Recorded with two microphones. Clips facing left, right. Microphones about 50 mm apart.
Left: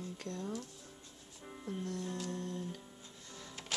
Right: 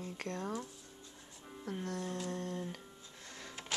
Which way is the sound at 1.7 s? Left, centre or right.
Right.